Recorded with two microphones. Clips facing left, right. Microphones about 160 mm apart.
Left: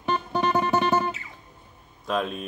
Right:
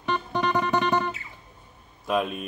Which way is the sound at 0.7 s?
5° left (ahead or behind).